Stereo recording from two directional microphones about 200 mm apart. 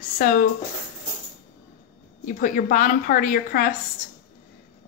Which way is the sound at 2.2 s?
40° left (ahead or behind).